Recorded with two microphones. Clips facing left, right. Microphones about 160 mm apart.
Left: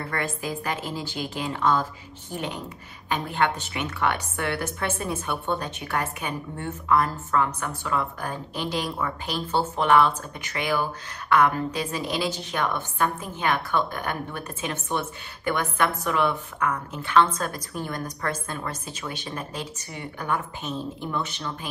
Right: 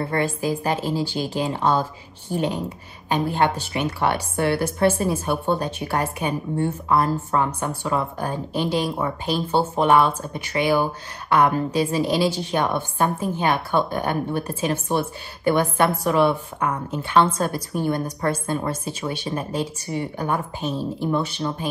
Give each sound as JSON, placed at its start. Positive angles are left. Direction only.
{"t": 0.0, "sound": "speech", "side_deg": -30}